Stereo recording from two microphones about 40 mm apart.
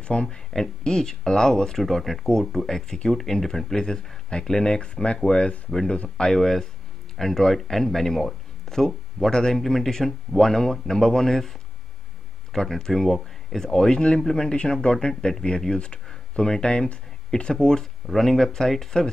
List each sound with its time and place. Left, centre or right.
0.0 s speech: left
0.5 s speech: centre
12.5 s speech: centre
13.7 s speech: centre
18.0 s speech: centre